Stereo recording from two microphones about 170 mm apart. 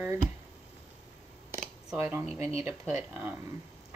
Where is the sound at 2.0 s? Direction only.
15° right (ahead or behind).